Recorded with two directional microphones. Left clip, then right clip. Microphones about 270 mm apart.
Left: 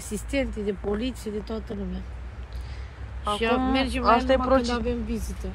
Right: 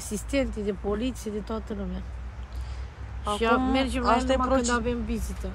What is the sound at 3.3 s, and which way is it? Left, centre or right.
Speech, centre.